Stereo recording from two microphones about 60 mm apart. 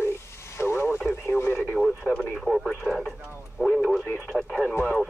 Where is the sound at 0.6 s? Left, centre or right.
Left.